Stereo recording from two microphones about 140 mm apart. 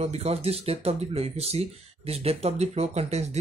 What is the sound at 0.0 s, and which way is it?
Speech, 50° right (ahead or behind).